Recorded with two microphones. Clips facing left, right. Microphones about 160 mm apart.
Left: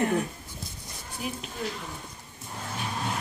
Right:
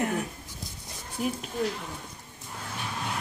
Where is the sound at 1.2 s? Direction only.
50° right (ahead or behind).